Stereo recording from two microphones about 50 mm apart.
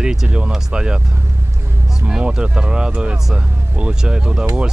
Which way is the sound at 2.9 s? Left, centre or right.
Centre.